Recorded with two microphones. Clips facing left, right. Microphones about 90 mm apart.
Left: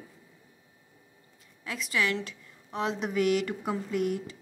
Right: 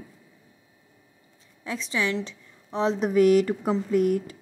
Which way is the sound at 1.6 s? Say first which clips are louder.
Right 2 dB; 30° right (ahead or behind).